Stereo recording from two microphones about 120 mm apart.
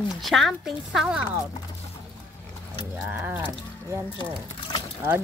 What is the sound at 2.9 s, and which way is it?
Speech, 15° right (ahead or behind).